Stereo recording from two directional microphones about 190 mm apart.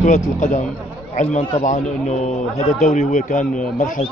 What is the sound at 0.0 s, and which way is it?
A man's voice, 40° left (ahead or behind).